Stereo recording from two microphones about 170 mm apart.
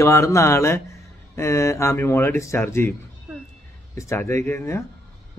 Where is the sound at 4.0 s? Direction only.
15° left (ahead or behind).